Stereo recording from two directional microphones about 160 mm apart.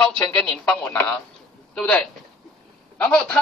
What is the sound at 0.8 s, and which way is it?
A man's voice, 10° left (ahead or behind).